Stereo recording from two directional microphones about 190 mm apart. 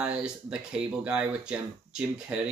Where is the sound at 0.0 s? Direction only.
5° right (ahead or behind).